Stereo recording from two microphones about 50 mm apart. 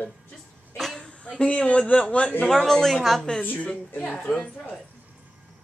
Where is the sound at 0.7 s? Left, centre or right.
Centre.